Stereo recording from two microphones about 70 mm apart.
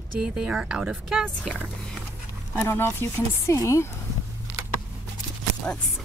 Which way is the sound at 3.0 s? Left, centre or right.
Left.